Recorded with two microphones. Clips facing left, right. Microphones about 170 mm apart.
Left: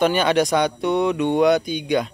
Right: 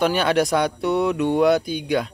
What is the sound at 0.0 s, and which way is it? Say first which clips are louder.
Speech: left 1 dB; centre (ahead or behind).